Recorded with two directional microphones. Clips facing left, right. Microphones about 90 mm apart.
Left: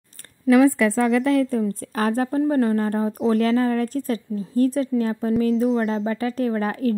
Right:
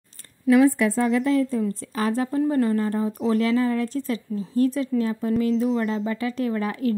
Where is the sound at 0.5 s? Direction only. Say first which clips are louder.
Left 2 dB; 90° left; by 1.6 s 70° left (ahead or behind).